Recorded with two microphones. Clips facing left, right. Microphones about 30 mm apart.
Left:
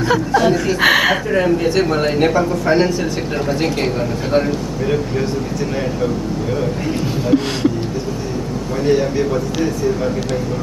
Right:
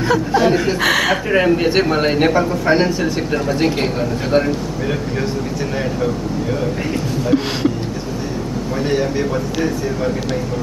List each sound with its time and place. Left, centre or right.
0.3 s a man's voice: centre
0.7 s speech: centre
1.3 s a man's voice: right; by 4.6 s centre
7.2 s speech: centre
8.8 s a man's voice: centre